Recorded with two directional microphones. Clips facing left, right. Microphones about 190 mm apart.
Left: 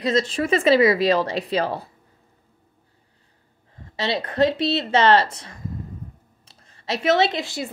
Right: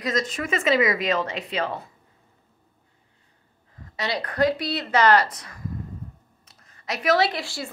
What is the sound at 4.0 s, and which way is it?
A woman's voice, 25° left (ahead or behind).